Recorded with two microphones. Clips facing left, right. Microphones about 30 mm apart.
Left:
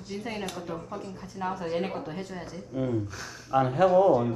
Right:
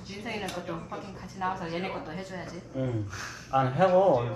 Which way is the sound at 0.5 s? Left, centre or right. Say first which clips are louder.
Even; right.